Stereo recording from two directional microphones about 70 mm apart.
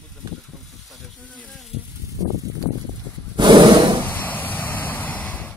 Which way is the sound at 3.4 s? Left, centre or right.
Right.